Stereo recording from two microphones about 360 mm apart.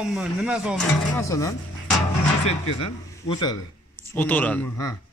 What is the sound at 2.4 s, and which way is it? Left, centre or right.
A man's voice, centre.